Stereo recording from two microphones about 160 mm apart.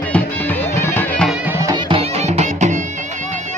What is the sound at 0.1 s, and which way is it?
Music, 10° left (ahead or behind).